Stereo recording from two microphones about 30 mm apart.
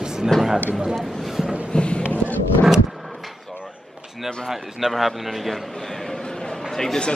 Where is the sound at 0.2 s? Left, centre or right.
Centre.